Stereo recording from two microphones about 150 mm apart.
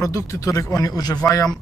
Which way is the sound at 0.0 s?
20° left (ahead or behind).